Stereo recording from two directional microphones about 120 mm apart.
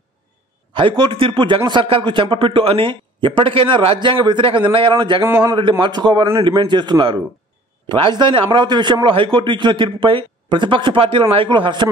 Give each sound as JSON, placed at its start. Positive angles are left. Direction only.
{"t": 0.7, "sound": "a man's voice", "side_deg": -45}
{"t": 5.2, "sound": "a man's voice", "side_deg": -20}
{"t": 5.5, "sound": "a man's voice", "side_deg": -40}